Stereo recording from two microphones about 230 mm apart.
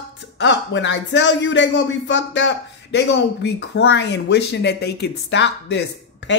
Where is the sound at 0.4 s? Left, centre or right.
Left.